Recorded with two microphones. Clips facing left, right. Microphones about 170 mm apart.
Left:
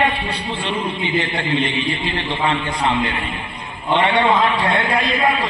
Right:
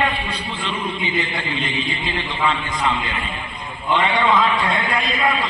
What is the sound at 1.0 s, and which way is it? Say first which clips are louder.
A man's voice: left 3 dB; 65° left (ahead or behind).